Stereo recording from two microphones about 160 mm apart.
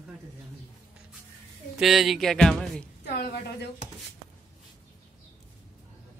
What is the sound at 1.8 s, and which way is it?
Speech, centre (ahead or behind).